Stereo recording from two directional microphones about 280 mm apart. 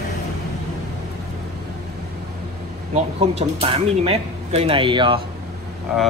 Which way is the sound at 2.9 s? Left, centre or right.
Right.